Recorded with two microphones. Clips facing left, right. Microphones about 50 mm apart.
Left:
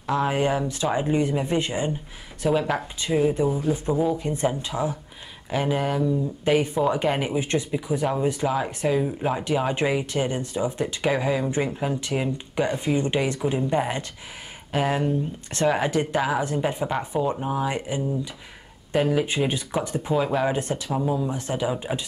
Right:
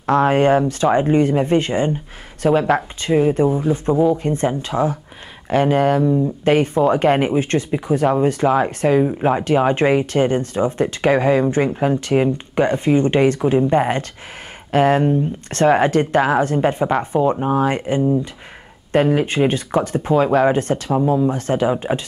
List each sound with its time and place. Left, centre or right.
0.0 s speech: right
2.5 s speech: right
3.0 s speech: right
15.9 s speech: right
20.2 s speech: right
20.5 s speech: right